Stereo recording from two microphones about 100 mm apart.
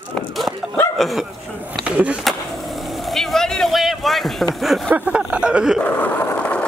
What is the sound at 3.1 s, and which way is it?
A man's voice, 5° left (ahead or behind).